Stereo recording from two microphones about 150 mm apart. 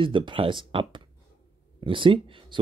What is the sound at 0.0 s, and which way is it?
Speech, 35° right (ahead or behind).